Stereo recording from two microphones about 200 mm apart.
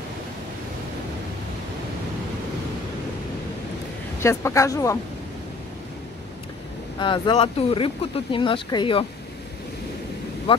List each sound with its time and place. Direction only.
4.2 s speech: 15° left (ahead or behind)
7.0 s speech: 25° left (ahead or behind)